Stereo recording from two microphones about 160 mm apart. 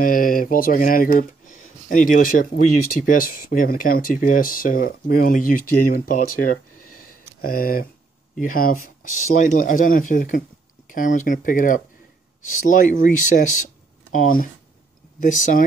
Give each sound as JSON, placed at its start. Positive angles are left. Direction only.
{"t": 0.0, "sound": "speech", "side_deg": 60}